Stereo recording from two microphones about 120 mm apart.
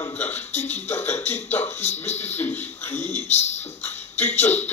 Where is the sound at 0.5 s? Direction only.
70° left (ahead or behind).